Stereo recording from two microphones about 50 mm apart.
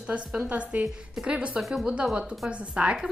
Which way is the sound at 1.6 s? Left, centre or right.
Centre.